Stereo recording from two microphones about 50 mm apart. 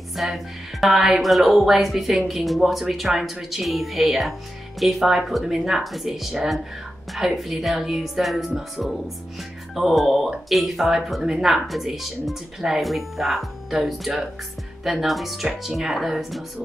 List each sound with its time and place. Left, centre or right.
0.1 s speech: centre